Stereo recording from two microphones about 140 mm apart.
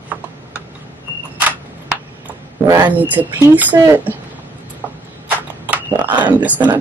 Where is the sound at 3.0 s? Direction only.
10° right (ahead or behind).